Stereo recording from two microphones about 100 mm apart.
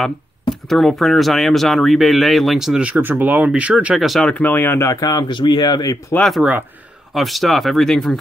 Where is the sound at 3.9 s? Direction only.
Centre (ahead or behind).